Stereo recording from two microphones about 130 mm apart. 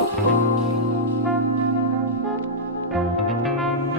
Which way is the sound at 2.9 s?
Centre (ahead or behind).